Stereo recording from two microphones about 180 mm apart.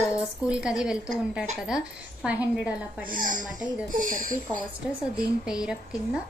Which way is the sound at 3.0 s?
50° right (ahead or behind).